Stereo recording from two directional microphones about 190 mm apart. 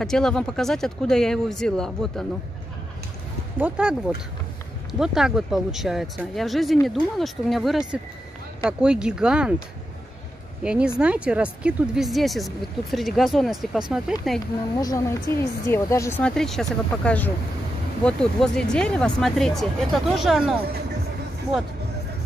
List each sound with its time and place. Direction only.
0.0 s speech: 5° left (ahead or behind)
3.5 s speech: 5° right (ahead or behind)
4.9 s speech: centre (ahead or behind)
10.6 s speech: 5° right (ahead or behind)
14.8 s a woman's voice: 20° left (ahead or behind); by 20.5 s centre (ahead or behind)